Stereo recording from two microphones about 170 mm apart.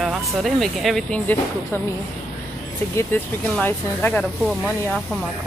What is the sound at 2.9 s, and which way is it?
Speech, 15° left (ahead or behind).